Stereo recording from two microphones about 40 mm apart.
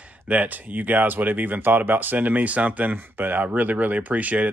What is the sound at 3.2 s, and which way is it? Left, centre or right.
Speech, right.